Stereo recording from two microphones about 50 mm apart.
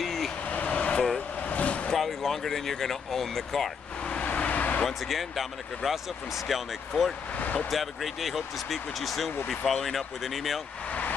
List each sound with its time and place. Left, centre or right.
0.0 s vehicle: centre
0.5 s vehicle: left
2.0 s speech: centre
4.0 s vehicle: left
4.8 s speech: centre
7.3 s vehicle: left
7.7 s speech: centre
10.9 s vehicle: left